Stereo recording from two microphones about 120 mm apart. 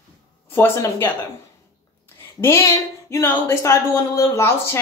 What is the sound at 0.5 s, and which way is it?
Speech, 20° left (ahead or behind).